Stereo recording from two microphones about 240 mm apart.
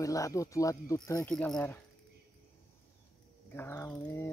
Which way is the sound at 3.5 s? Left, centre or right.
Centre.